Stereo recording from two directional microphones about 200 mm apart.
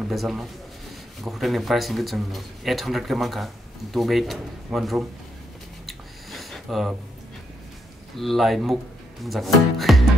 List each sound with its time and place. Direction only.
0.1 s speech: centre (ahead or behind)
5.9 s a sound: centre (ahead or behind)
8.2 s speech: centre (ahead or behind)